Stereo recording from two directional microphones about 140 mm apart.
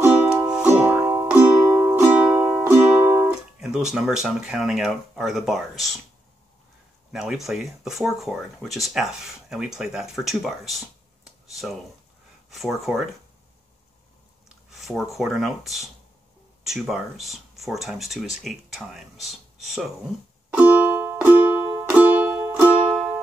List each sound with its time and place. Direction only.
0.7 s music: 10° right (ahead or behind)
7.1 s speech: 5° right (ahead or behind)
14.7 s speech: centre (ahead or behind)
20.5 s music: 10° right (ahead or behind)